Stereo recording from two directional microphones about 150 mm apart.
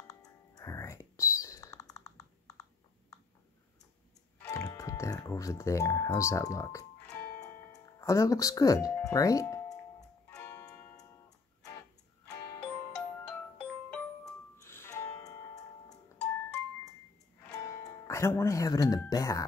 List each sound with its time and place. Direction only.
0.1 s music: 25° left (ahead or behind)
4.5 s speech: 25° left (ahead or behind)
7.0 s music: 10° left (ahead or behind)
7.3 s music: 25° left (ahead or behind)
10.6 s tick-tock: 20° left (ahead or behind)
12.6 s music: 10° left (ahead or behind); by 16.0 s 25° left (ahead or behind)
17.5 s music: 20° left (ahead or behind)